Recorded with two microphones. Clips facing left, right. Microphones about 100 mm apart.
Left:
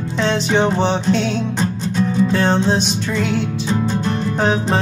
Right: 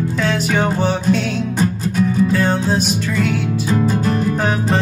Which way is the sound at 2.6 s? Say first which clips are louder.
Even; 5° right (ahead or behind).